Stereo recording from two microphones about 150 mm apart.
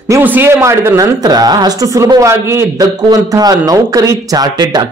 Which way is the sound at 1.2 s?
25° right (ahead or behind).